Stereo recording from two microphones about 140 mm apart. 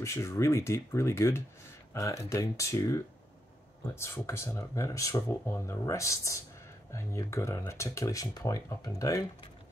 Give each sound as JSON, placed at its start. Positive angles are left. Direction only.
{"t": 0.0, "sound": "speech", "side_deg": 20}